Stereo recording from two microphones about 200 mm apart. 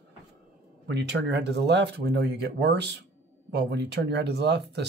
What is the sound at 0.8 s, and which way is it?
Speech, 60° right (ahead or behind).